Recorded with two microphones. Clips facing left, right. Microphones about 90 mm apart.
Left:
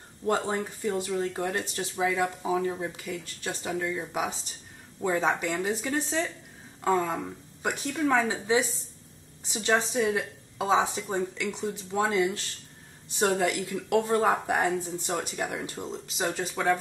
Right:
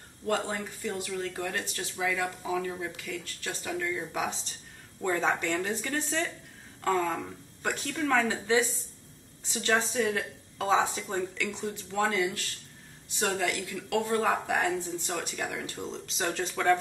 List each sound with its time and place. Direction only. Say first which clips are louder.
0.3 s a woman's voice: left 3 dB; 25° left (ahead or behind)
15.8 s a woman's voice: left 1 dB; 5° left (ahead or behind)